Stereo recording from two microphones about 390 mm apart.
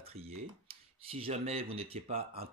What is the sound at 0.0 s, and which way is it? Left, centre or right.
Speech, centre.